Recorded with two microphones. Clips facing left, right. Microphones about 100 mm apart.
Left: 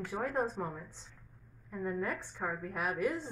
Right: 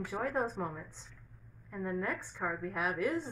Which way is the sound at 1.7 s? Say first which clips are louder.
Even; 5° left (ahead or behind).